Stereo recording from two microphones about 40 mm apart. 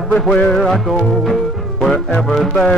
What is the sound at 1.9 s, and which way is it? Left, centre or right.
Speech, centre.